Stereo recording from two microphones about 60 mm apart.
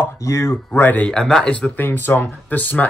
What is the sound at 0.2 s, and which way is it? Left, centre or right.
Speech, left.